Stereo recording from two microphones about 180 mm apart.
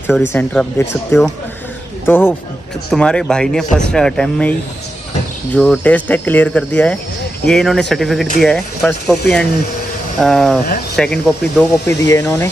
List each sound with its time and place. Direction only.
0.2 s speech: 10° left (ahead or behind)
11.9 s speech: 15° left (ahead or behind)